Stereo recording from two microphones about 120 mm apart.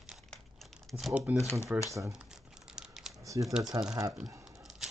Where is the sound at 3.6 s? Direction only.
5° right (ahead or behind).